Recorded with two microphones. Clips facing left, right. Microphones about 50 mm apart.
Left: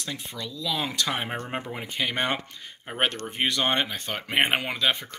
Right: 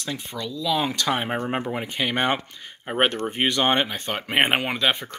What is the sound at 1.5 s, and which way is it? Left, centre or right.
Speech, right.